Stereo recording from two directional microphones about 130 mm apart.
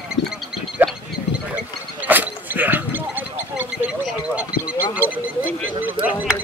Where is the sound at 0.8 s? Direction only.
15° right (ahead or behind).